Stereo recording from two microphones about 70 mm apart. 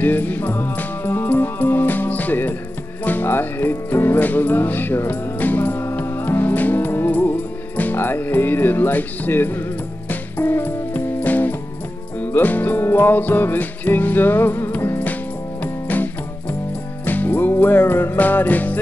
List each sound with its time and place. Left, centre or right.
0.0 s music: left
3.1 s speech: left
10.0 s music: left
15.6 s music: left